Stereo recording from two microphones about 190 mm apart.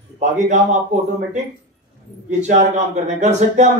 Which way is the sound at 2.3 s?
40° right (ahead or behind).